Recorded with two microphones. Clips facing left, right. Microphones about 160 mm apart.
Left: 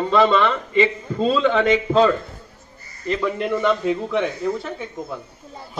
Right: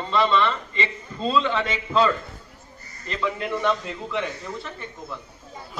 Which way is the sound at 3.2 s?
55° left (ahead or behind).